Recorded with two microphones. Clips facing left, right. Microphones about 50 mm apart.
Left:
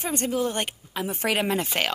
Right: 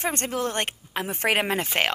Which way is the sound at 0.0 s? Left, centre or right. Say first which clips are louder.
Left 1 dB; right.